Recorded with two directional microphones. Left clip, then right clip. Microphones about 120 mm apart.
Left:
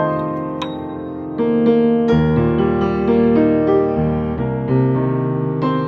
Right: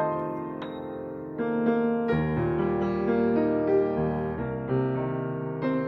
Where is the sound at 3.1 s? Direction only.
25° left (ahead or behind).